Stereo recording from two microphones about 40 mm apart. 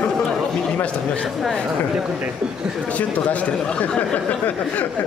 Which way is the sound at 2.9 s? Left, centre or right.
Left.